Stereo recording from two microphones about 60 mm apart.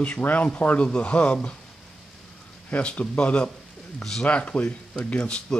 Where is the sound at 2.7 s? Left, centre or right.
Left.